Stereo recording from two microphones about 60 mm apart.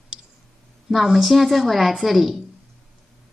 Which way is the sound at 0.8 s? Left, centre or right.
Centre.